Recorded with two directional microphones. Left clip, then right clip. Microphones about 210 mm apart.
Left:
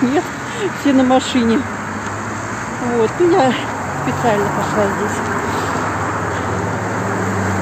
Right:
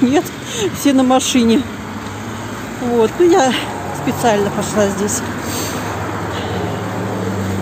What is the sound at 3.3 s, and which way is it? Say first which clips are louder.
Speech: even; 20° right (ahead or behind).